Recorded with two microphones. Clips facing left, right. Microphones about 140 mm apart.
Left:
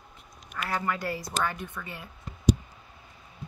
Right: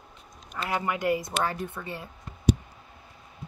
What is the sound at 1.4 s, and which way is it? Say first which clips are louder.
Speech: right 2 dB; 30° right (ahead or behind).